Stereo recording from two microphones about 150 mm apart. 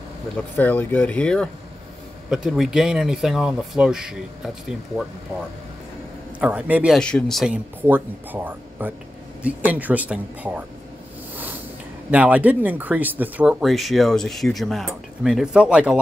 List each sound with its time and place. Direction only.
0.6 s speech: 10° left (ahead or behind)
6.4 s speech: 10° right (ahead or behind)
7.0 s speech: 5° left (ahead or behind)
7.8 s speech: 15° right (ahead or behind)
12.1 s speech: 10° right (ahead or behind)